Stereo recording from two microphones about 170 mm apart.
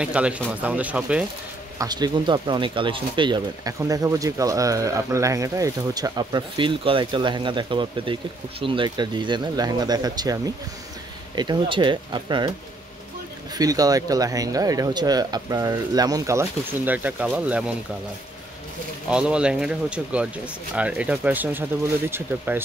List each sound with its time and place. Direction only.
0.0 s speech: 5° right (ahead or behind)
1.8 s speech: 25° right (ahead or behind)
13.6 s speech: 20° right (ahead or behind)
19.0 s speech: 5° right (ahead or behind)